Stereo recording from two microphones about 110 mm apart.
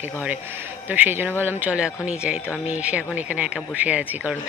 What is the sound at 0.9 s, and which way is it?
Speech, 15° right (ahead or behind).